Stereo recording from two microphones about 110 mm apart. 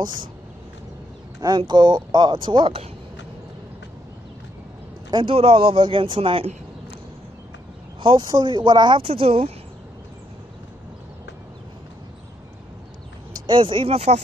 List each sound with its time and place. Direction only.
1.7 s speech: 45° right (ahead or behind)
5.1 s speech: 55° right (ahead or behind)
8.0 s speech: 50° right (ahead or behind)
8.3 s speech: 40° right (ahead or behind)
9.0 s speech: 60° right (ahead or behind)
13.5 s speech: 50° right (ahead or behind); by 14.2 s 70° right (ahead or behind)